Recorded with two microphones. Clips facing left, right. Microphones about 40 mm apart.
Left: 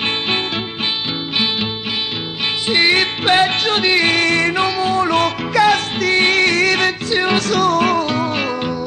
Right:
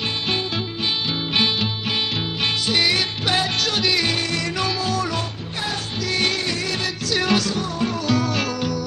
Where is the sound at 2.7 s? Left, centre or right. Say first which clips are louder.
Left 9 dB; left.